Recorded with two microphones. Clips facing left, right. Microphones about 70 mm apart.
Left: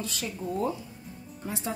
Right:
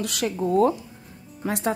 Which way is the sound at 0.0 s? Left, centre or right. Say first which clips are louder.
Right 9 dB; right.